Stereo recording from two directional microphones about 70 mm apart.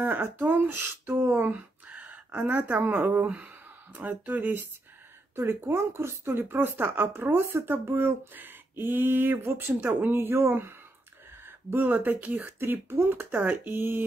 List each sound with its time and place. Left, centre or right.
0.0 s speech: right